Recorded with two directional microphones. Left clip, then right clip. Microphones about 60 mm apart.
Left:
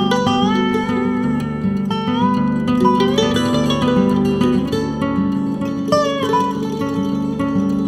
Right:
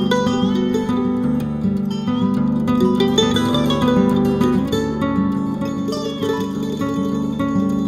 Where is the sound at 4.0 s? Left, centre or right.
Left.